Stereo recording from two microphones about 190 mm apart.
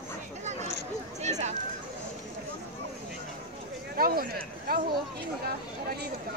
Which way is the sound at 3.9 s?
50° right (ahead or behind).